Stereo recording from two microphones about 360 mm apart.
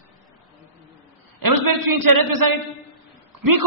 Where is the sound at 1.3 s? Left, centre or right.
Right.